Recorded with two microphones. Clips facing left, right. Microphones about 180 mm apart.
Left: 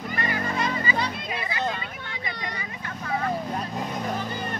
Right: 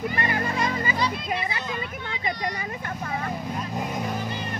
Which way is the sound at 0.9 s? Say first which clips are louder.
Right 2 dB; 55° left (ahead or behind).